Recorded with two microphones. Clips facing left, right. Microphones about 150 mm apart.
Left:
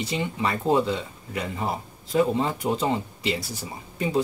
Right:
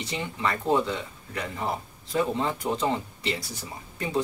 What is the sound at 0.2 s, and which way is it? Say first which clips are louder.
Speech: even; 15° left (ahead or behind).